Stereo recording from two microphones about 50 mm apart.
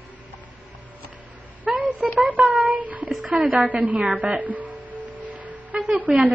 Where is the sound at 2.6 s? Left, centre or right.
Right.